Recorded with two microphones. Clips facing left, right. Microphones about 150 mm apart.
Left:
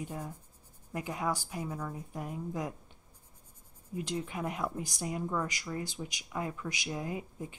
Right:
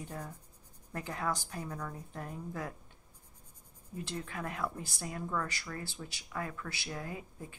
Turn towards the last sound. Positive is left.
turn(degrees=20)  # may be behind; listen again after turning